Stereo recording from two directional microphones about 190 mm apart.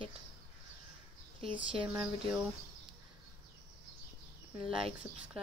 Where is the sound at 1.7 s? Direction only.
25° right (ahead or behind).